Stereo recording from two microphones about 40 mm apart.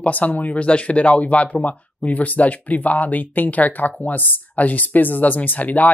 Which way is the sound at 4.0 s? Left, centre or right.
Left.